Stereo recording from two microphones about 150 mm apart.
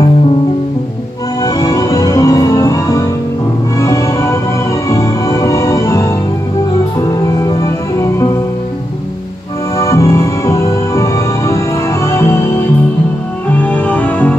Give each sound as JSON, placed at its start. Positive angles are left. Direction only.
{"t": 1.4, "sound": "music", "side_deg": 25}
{"t": 9.8, "sound": "music", "side_deg": 20}
{"t": 13.6, "sound": "music", "side_deg": 10}